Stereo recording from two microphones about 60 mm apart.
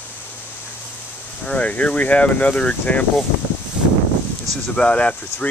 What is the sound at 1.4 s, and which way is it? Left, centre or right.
Speech, left.